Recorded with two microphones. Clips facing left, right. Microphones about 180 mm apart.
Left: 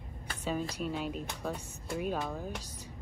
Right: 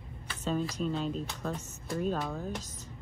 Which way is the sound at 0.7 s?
10° left (ahead or behind).